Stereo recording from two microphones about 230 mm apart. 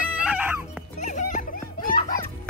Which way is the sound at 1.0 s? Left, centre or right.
Left.